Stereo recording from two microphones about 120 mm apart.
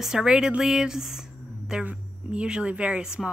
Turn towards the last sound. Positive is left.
turn(degrees=-5)  # may be behind; listen again after turning